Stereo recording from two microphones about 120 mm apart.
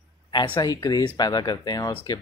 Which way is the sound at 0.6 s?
35° left (ahead or behind).